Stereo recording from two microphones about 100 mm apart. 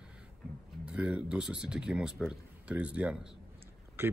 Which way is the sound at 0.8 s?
10° right (ahead or behind).